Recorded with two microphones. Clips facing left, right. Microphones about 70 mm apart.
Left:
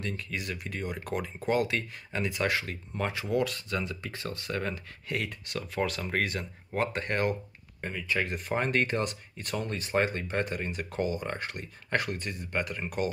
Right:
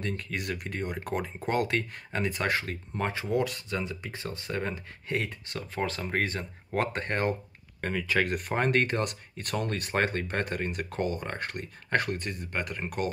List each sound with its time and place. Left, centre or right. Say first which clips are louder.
0.0 s speech: right 2 dB; right
3.0 s speech: even; right
7.8 s speech: right 4 dB; right
8.5 s speech: right 1 dB; right